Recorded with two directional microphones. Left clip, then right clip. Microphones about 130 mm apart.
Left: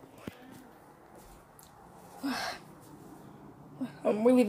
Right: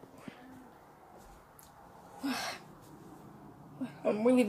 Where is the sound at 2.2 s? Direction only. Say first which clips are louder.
Left 2 dB; centre (ahead or behind).